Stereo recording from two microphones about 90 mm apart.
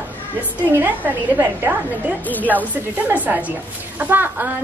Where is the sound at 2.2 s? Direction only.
20° left (ahead or behind).